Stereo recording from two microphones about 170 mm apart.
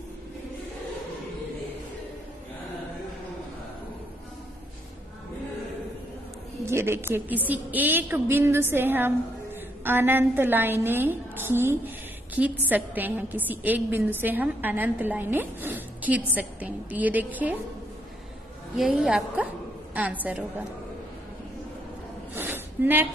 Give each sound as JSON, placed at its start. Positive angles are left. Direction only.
{"t": 6.6, "sound": "a woman's voice", "side_deg": -15}
{"t": 18.8, "sound": "a woman's voice", "side_deg": -5}
{"t": 22.3, "sound": "a sound", "side_deg": -10}